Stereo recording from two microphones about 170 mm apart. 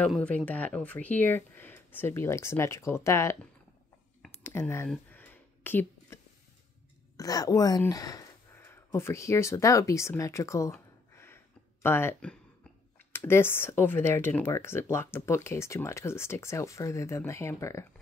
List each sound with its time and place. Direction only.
0.0 s speech: 5° left (ahead or behind)
4.4 s speech: 15° left (ahead or behind)
4.8 s a sound: 5° left (ahead or behind)
7.2 s speech: 20° left (ahead or behind)